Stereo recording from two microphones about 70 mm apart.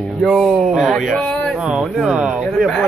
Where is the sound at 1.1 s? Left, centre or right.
Centre.